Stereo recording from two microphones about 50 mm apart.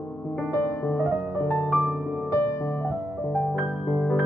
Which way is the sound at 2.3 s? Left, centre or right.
Left.